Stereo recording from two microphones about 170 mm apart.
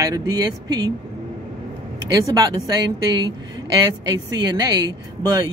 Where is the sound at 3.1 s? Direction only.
25° right (ahead or behind).